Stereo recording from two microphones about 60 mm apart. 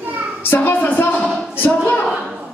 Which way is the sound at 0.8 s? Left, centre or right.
Left.